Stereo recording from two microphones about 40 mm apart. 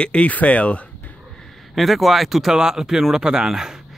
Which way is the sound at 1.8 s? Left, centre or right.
Centre.